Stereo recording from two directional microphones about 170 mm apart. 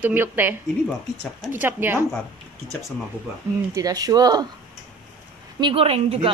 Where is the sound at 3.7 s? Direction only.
20° right (ahead or behind).